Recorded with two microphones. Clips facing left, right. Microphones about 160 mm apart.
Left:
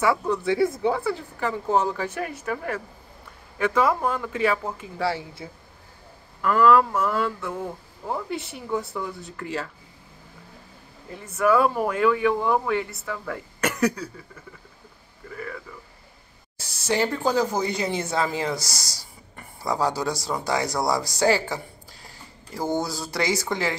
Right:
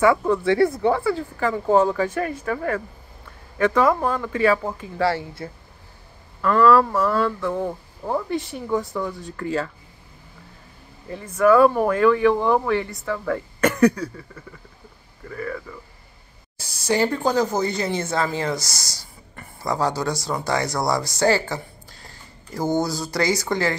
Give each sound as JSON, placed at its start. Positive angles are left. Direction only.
{"t": 0.3, "sound": "speech", "side_deg": 0}
{"t": 11.1, "sound": "speech", "side_deg": 5}
{"t": 16.8, "sound": "speech", "side_deg": 0}
{"t": 18.7, "sound": "speech", "side_deg": 35}
{"t": 19.3, "sound": "speech", "side_deg": 5}